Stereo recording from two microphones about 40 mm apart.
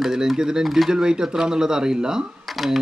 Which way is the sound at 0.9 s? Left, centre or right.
Centre.